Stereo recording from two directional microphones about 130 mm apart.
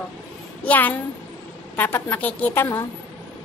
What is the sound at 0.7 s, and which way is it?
A woman's voice, 15° left (ahead or behind).